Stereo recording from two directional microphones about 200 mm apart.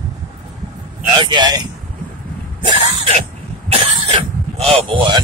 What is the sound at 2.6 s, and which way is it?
Cough, 30° right (ahead or behind).